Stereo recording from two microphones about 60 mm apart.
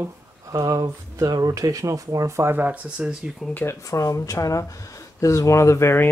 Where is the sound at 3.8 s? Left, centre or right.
Left.